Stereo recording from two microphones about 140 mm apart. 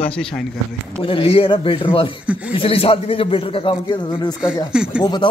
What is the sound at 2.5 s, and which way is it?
A man's voice, 45° left (ahead or behind).